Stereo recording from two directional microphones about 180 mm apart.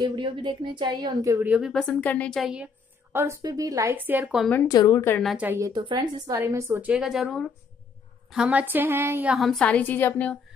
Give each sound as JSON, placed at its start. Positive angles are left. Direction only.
{"t": 0.0, "sound": "a woman's voice", "side_deg": -25}
{"t": 1.7, "sound": "a woman's voice", "side_deg": 5}
{"t": 4.6, "sound": "a woman's voice", "side_deg": 20}
{"t": 5.2, "sound": "a woman's voice", "side_deg": 0}
{"t": 5.5, "sound": "speech", "side_deg": -20}
{"t": 6.4, "sound": "a woman's voice", "side_deg": -15}